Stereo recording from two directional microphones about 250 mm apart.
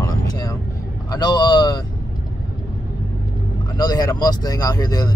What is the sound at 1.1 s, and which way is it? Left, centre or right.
Speech, centre.